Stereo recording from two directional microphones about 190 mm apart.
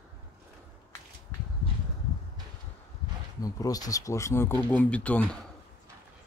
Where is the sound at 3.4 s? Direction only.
20° left (ahead or behind).